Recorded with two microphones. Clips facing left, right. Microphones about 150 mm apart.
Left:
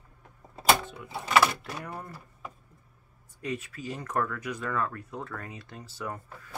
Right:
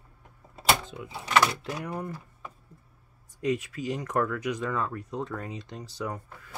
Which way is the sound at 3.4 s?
20° right (ahead or behind).